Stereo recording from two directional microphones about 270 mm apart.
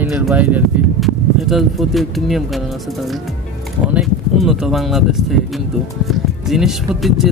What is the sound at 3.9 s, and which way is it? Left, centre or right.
Speech, centre.